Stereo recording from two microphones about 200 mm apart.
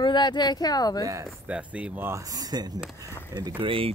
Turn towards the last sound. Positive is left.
turn(degrees=-25)  # may be behind; listen again after turning